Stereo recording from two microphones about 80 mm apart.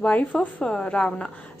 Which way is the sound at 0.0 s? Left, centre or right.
Centre.